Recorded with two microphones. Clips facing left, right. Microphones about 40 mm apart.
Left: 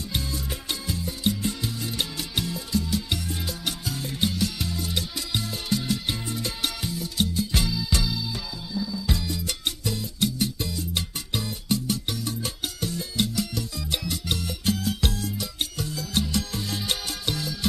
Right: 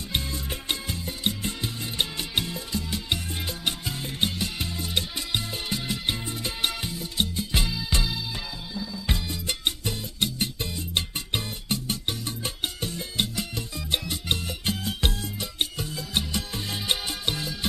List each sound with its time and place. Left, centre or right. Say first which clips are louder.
0.1 s music: right 2 dB; right